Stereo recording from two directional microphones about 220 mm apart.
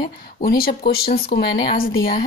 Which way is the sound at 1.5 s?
20° left (ahead or behind).